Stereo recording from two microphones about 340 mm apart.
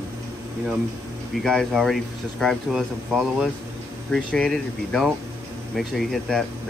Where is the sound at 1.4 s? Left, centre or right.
Centre.